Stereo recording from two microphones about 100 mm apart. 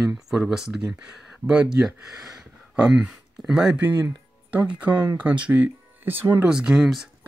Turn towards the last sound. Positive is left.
turn(degrees=-5)  # may be behind; listen again after turning